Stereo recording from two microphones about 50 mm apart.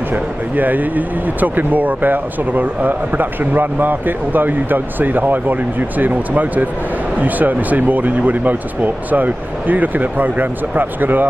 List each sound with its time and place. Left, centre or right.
0.1 s speech: right